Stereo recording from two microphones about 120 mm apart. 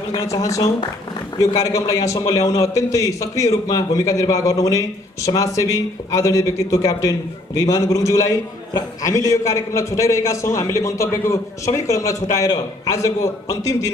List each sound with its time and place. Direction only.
0.1 s a man's voice: 25° left (ahead or behind)